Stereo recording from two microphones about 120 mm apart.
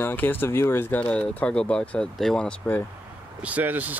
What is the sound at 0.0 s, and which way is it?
Speech, 15° left (ahead or behind).